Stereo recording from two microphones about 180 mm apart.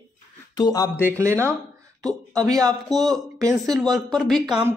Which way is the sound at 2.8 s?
Centre (ahead or behind).